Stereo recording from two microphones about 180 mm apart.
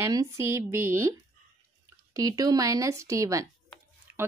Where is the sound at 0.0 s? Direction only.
15° right (ahead or behind).